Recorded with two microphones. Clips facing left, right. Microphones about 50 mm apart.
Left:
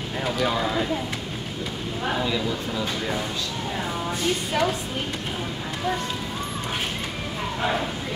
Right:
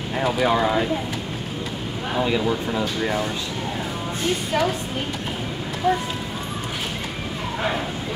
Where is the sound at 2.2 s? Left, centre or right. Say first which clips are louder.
Right 4 dB; right.